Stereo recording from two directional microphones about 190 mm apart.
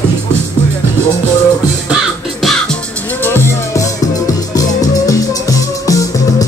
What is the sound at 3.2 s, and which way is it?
Music, 10° left (ahead or behind).